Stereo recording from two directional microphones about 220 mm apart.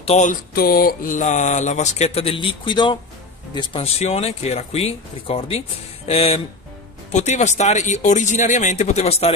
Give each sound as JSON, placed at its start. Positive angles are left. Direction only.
{"t": 0.0, "sound": "mantra", "side_deg": 30}
{"t": 3.5, "sound": "speech", "side_deg": 20}
{"t": 7.1, "sound": "mantra", "side_deg": 30}